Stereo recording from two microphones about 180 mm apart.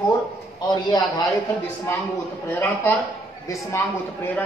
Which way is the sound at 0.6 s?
25° left (ahead or behind).